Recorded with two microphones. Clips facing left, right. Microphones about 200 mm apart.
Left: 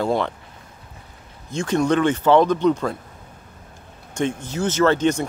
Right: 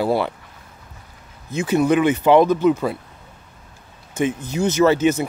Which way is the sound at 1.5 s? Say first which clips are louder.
Right 2 dB; 5° right (ahead or behind).